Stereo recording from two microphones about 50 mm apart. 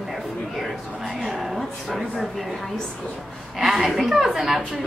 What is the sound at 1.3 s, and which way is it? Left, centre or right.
Speech, centre.